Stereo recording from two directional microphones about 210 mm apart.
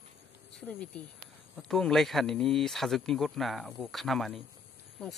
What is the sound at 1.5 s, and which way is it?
Speech, centre (ahead or behind).